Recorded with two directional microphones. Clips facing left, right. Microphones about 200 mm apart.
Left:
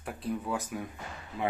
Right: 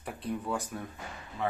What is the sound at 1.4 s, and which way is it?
Speech, 15° left (ahead or behind).